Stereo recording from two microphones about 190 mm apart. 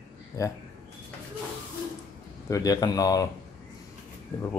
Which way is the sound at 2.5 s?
20° left (ahead or behind).